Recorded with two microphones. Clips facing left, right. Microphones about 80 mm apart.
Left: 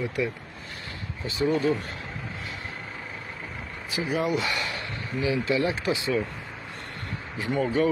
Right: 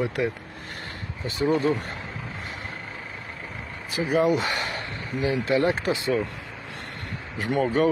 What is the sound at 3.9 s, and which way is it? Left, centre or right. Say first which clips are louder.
Speech: right 4 dB; right.